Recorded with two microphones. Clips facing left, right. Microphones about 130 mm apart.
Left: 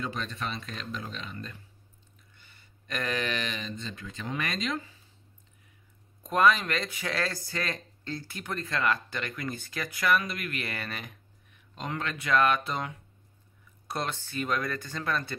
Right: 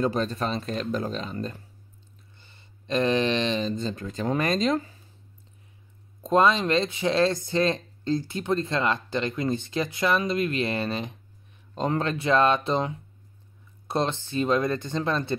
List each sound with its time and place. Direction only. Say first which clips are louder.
0.0 s speech: right 9 dB; 35° right (ahead or behind)
6.2 s speech: right 3 dB; 25° right (ahead or behind)